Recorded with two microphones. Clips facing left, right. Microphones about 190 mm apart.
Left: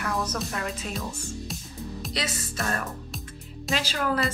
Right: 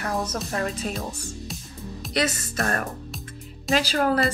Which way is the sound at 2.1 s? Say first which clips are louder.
Right 8 dB; 55° right (ahead or behind).